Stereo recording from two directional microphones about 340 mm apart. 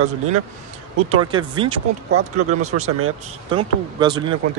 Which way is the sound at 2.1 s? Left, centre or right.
Right.